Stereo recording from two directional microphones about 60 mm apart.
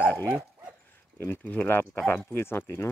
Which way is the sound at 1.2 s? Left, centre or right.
Left.